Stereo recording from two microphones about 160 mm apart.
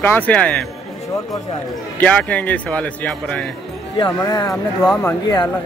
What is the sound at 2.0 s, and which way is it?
Speech, 10° left (ahead or behind).